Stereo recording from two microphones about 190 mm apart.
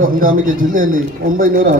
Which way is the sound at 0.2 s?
45° right (ahead or behind).